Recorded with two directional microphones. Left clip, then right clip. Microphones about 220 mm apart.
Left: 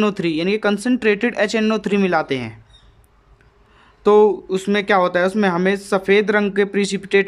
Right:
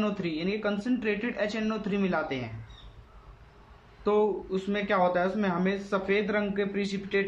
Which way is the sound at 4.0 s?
45° left (ahead or behind).